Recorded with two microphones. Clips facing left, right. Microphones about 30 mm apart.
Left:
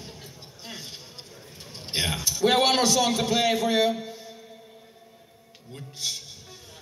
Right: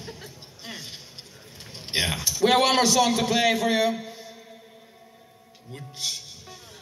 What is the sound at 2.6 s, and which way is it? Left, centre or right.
A man's voice, right.